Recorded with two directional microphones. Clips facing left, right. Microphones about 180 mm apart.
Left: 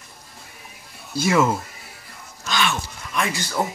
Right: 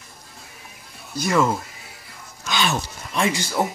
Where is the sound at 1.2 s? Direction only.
5° left (ahead or behind).